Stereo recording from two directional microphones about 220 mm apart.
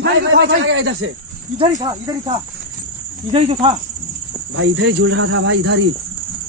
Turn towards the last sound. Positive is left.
turn(degrees=-60)  # may be behind; listen again after turning